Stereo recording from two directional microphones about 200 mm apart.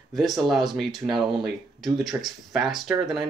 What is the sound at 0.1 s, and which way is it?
Speech, centre (ahead or behind).